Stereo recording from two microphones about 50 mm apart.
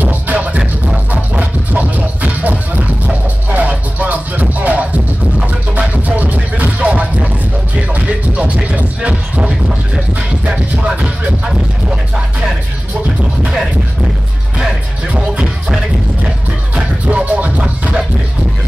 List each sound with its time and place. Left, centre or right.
0.0 s music: right
10.8 s music: right
16.7 s music: right